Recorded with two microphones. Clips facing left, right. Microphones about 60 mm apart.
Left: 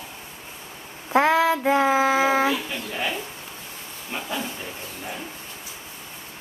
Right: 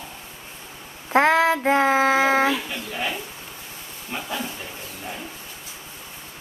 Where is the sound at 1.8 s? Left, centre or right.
Centre.